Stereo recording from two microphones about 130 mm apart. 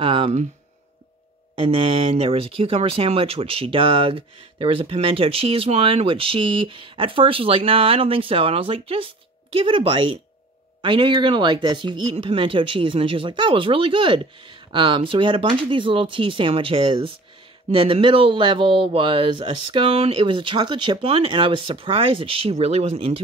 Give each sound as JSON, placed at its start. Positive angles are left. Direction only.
{"t": 0.0, "sound": "speech", "side_deg": -45}
{"t": 1.5, "sound": "speech", "side_deg": -45}